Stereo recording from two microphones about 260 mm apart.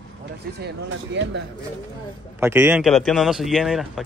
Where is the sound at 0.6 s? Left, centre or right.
Right.